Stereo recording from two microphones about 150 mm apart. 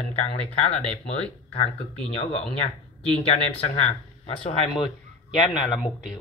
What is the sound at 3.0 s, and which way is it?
Speech, 45° left (ahead or behind).